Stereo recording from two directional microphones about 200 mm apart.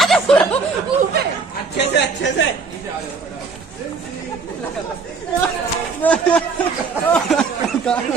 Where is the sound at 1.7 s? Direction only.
60° left (ahead or behind).